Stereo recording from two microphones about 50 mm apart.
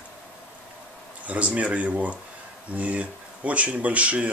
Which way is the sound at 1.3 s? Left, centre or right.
Right.